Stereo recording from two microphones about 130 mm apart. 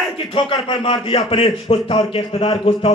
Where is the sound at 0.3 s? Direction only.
45° left (ahead or behind).